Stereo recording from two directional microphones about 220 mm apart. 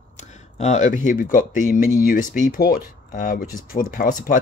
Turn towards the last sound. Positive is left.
turn(degrees=40)  # may be behind; listen again after turning